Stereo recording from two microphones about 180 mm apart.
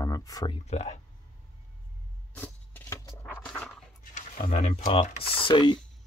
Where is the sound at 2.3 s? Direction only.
10° left (ahead or behind).